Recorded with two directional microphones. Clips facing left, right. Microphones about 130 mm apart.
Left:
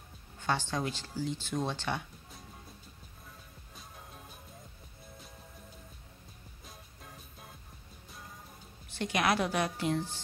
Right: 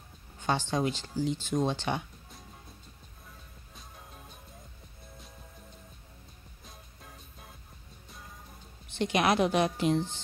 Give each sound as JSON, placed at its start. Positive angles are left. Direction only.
{"t": 0.4, "sound": "speech", "side_deg": -15}
{"t": 3.7, "sound": "music", "side_deg": 0}
{"t": 6.6, "sound": "music", "side_deg": 0}
{"t": 8.8, "sound": "speech", "side_deg": -20}